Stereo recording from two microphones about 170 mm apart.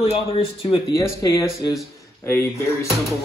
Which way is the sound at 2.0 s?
15° left (ahead or behind).